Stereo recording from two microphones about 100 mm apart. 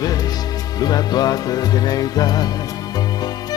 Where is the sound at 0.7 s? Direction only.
40° left (ahead or behind).